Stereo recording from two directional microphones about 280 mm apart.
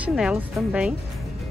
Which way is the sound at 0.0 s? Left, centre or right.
Centre.